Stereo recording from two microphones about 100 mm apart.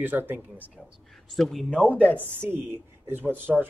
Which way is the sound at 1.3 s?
Centre (ahead or behind).